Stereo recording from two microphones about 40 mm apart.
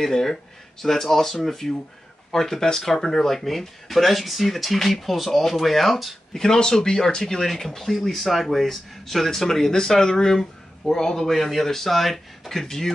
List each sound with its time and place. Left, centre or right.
0.0 s speech: centre
6.3 s speech: centre